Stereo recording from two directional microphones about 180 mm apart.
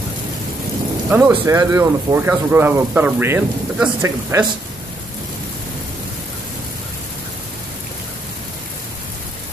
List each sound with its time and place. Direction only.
1.1 s speech: 15° right (ahead or behind)